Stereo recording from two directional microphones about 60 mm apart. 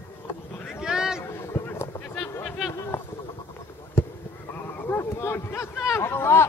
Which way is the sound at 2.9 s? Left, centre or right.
Left.